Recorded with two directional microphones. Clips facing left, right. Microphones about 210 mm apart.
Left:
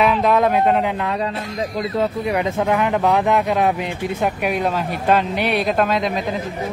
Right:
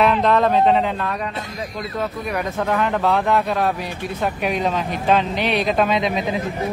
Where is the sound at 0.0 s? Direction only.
5° left (ahead or behind).